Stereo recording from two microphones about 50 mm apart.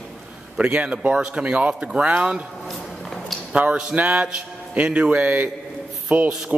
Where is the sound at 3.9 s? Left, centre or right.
Right.